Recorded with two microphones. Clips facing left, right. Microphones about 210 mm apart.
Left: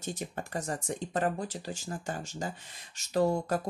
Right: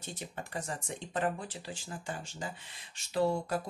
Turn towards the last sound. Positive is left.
turn(degrees=45)  # may be behind; listen again after turning